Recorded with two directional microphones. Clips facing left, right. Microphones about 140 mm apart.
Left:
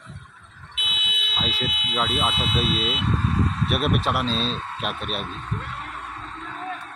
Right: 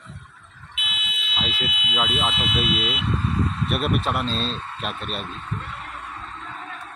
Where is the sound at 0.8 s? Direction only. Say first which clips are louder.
Even; 30° left (ahead or behind).